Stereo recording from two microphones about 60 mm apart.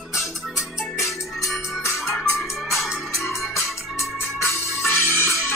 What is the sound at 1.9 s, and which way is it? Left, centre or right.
Music, left.